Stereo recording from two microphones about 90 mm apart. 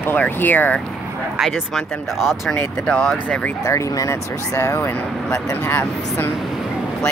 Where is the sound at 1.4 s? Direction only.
5° right (ahead or behind).